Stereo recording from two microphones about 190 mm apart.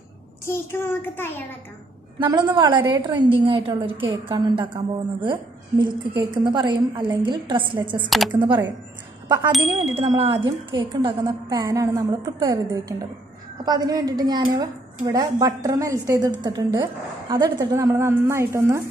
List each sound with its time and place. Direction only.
0.5 s a child's voice: 10° left (ahead or behind)
2.1 s a woman's voice: 25° right (ahead or behind)
8.0 s speech: centre (ahead or behind)
8.3 s a woman's voice: 25° right (ahead or behind)
9.9 s a woman's voice: 30° right (ahead or behind); by 18.8 s 15° right (ahead or behind)